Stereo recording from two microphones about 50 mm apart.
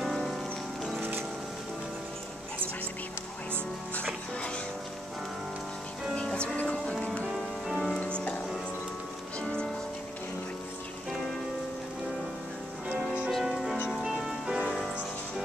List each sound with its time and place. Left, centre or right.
0.0 s music: centre
6.1 s music: left
7.2 s music: centre
8.0 s music: left
12.8 s music: right
13.4 s music: centre